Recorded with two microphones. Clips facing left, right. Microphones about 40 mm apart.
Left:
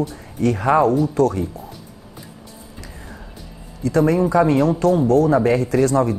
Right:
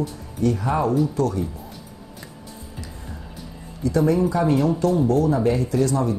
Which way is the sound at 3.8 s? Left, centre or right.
Left.